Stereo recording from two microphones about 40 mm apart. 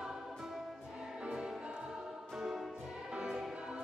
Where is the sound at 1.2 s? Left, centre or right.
Right.